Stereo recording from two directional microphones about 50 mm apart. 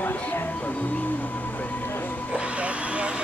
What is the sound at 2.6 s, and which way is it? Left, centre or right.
Vehicle, right.